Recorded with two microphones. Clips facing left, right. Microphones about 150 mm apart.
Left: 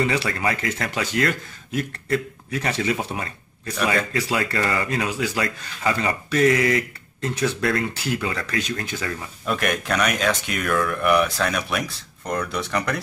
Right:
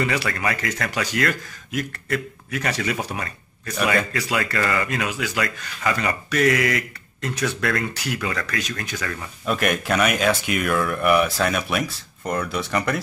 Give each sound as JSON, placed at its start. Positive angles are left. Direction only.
{"t": 0.0, "sound": "speech", "side_deg": 25}
{"t": 9.5, "sound": "speech", "side_deg": -5}